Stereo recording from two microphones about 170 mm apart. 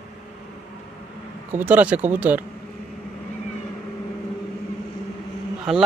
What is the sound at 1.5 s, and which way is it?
Speech, 10° right (ahead or behind).